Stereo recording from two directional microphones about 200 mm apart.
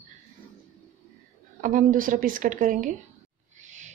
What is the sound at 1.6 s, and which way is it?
A woman's voice, 40° right (ahead or behind).